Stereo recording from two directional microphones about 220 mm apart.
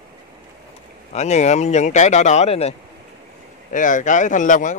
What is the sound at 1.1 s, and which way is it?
Speech, 30° left (ahead or behind).